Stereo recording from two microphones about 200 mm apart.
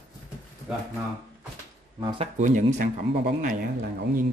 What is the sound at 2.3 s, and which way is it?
Speech, 40° right (ahead or behind).